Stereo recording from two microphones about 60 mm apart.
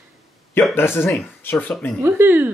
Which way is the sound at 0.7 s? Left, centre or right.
Left.